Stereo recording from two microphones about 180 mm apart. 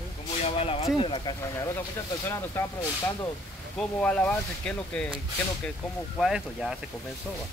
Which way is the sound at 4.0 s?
5° left (ahead or behind).